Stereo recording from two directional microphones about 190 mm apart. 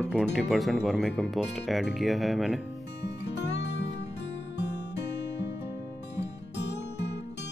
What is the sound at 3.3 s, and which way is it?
Music, 65° left (ahead or behind).